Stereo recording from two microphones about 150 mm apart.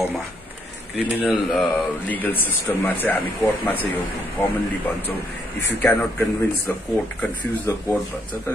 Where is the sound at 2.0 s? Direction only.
10° left (ahead or behind).